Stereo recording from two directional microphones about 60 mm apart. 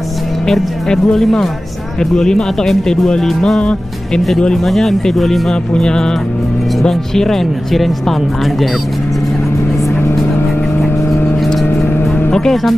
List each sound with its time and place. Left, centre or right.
0.5 s speech: centre
11.6 s vehicle: left
12.3 s speech: centre